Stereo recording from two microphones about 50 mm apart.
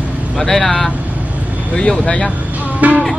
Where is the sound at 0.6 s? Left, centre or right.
Left.